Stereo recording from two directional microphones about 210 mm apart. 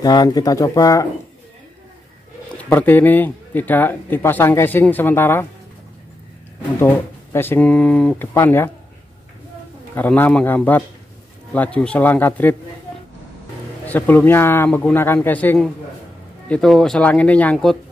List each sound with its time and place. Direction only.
0.0 s speech: 20° left (ahead or behind)
2.5 s speech: 10° left (ahead or behind)
6.8 s speech: 10° left (ahead or behind)
9.9 s speech: 10° left (ahead or behind)
13.8 s speech: 10° left (ahead or behind)